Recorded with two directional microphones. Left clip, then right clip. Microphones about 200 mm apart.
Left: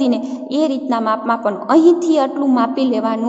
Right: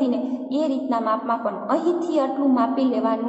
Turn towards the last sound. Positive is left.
turn(degrees=40)  # may be behind; listen again after turning